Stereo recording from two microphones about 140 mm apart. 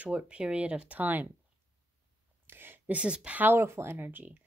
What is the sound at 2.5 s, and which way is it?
Speech, 15° right (ahead or behind).